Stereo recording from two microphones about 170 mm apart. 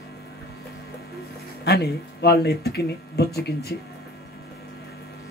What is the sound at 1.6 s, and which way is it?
Speech, 75° left (ahead or behind).